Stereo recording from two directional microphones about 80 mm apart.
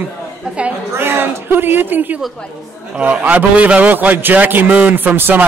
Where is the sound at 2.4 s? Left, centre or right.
Centre.